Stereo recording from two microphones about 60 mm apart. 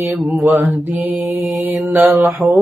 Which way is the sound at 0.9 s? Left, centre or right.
Right.